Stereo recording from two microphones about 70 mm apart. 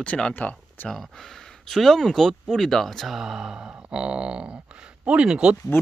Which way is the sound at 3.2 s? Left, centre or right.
Centre.